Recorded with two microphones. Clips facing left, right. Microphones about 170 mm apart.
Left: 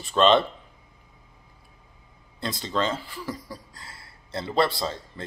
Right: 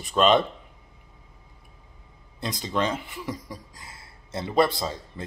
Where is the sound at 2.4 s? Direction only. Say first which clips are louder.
Even; 15° right (ahead or behind).